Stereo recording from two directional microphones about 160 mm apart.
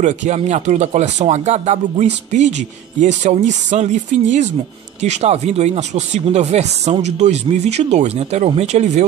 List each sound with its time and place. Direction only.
0.0 s speech: 45° right (ahead or behind)